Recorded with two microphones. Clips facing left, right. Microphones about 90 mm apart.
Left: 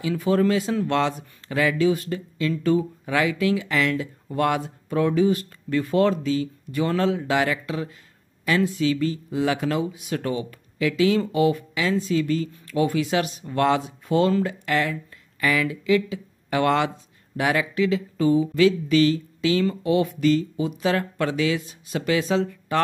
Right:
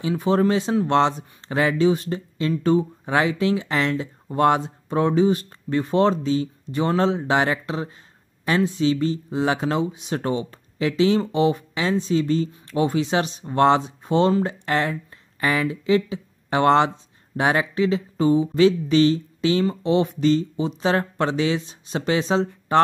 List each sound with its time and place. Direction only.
0.0 s speech: 25° right (ahead or behind)